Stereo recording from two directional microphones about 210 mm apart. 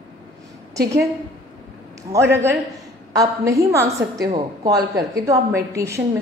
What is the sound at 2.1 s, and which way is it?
A woman's voice, 10° right (ahead or behind).